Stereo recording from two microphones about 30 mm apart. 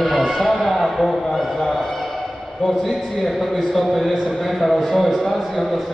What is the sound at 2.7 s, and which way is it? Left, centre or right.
A man's voice, centre.